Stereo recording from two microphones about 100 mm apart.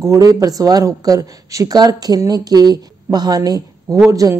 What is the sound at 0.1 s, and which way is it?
Speech, 35° right (ahead or behind).